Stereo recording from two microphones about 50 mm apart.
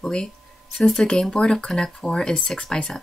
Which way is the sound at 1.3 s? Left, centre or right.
Centre.